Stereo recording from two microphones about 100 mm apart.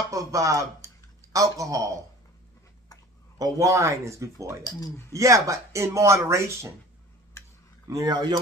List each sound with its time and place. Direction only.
0.1 s speech: 35° right (ahead or behind)
3.3 s speech: 35° right (ahead or behind)
4.6 s speech: 40° left (ahead or behind)
5.1 s speech: 30° right (ahead or behind)
7.9 s speech: 40° right (ahead or behind)